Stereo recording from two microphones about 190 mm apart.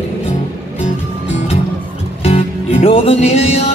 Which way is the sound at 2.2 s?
30° left (ahead or behind).